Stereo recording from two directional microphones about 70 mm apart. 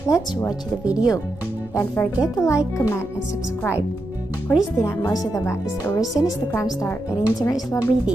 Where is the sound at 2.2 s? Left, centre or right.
Left.